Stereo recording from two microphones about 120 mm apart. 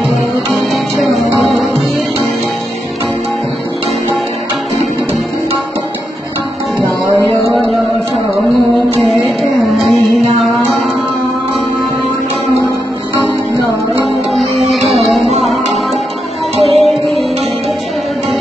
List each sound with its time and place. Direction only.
0.6 s music: centre (ahead or behind)
9.0 s music: centre (ahead or behind)
14.0 s music: centre (ahead or behind)
16.5 s music: 60° right (ahead or behind)
16.8 s music: centre (ahead or behind)